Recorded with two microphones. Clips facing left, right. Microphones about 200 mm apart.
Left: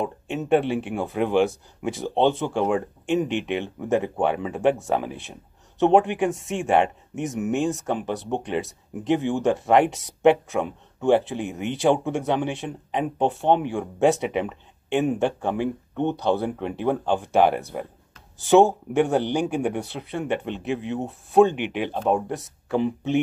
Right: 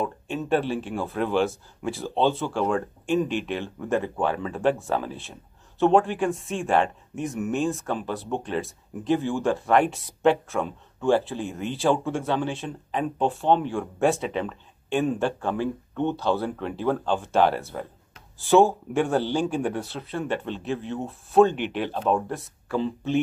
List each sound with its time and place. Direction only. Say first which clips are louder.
0.0 s speech: left 1 dB; 20° left (ahead or behind)